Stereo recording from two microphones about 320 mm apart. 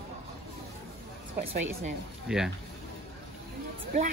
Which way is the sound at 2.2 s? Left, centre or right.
Centre.